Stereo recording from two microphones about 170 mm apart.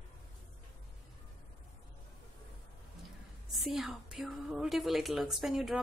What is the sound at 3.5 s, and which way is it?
A woman's voice, centre (ahead or behind).